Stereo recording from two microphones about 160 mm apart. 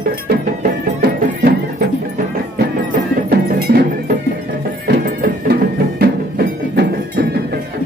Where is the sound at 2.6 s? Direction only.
70° right (ahead or behind).